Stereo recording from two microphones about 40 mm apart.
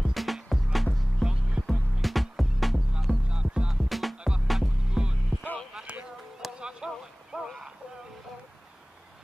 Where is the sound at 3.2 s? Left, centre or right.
Right.